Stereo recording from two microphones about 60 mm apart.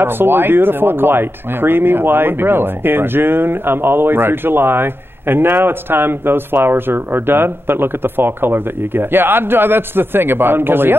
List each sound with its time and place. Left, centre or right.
0.0 s speech: right